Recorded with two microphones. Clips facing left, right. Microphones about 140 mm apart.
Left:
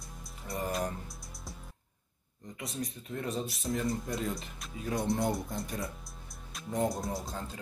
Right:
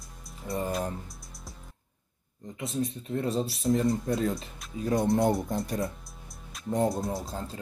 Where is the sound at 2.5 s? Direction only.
25° right (ahead or behind).